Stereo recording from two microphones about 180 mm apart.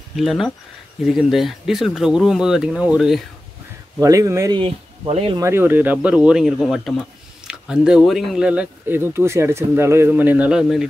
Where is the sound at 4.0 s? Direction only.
20° right (ahead or behind).